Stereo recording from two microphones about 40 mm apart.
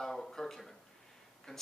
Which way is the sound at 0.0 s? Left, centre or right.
Centre.